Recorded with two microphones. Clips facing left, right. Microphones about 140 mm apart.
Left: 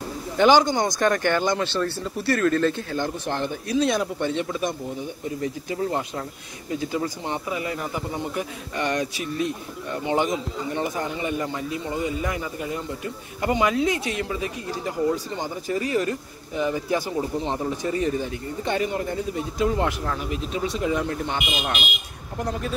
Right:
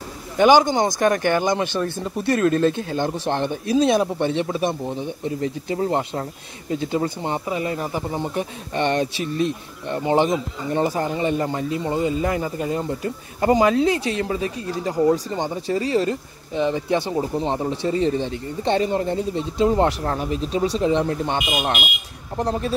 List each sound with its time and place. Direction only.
0.4 s speech: 20° right (ahead or behind)
21.5 s speech: 40° right (ahead or behind)